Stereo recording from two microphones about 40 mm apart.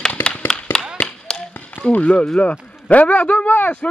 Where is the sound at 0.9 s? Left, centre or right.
Centre.